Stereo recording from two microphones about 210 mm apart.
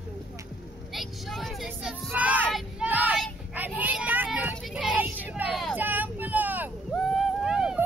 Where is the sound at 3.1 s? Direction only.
Centre (ahead or behind).